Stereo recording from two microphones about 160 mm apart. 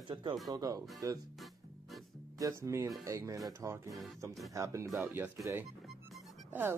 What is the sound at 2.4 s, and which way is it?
Speech, 20° right (ahead or behind).